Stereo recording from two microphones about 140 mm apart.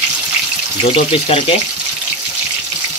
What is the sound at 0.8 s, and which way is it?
Speech, 45° left (ahead or behind).